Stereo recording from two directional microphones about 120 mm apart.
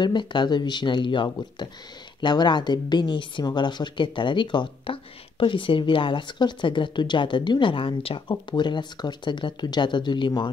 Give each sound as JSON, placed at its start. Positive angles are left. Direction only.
{"t": 0.0, "sound": "speech", "side_deg": 40}